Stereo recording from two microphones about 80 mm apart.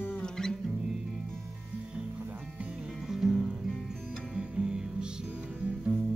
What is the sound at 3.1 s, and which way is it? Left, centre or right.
Music, centre.